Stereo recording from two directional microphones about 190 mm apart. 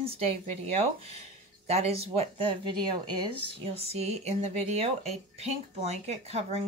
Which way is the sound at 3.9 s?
35° right (ahead or behind).